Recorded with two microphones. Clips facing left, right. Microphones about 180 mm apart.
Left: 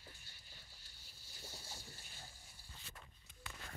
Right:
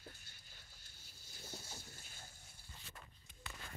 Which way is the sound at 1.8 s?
45° right (ahead or behind).